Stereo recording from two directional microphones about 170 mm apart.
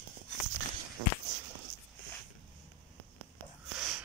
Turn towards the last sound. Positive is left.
turn(degrees=-5)  # may be behind; listen again after turning